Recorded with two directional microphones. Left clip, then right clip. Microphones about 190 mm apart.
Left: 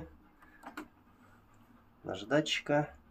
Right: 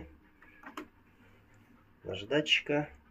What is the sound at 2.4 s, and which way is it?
Speech, 15° left (ahead or behind).